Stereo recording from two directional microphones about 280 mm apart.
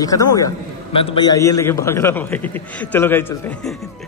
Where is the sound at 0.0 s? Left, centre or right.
Centre.